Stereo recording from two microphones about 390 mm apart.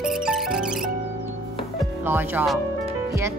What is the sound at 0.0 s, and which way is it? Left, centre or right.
Music, centre.